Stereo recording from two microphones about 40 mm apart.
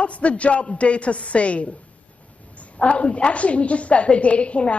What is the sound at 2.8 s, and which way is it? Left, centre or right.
Speech, left.